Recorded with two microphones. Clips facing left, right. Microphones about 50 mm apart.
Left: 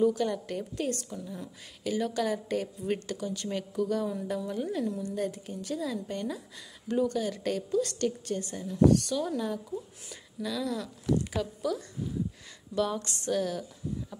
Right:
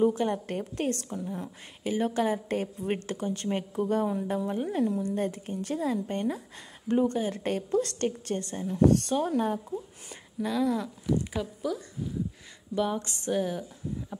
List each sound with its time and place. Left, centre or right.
0.0 s a woman's voice: right
11.1 s a woman's voice: centre